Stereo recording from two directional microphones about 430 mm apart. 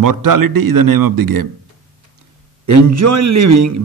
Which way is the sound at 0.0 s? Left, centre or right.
Right.